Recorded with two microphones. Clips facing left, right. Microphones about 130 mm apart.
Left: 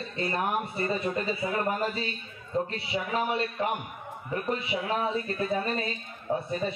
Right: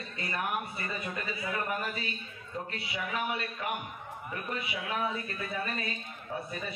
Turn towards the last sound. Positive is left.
turn(degrees=30)  # may be behind; listen again after turning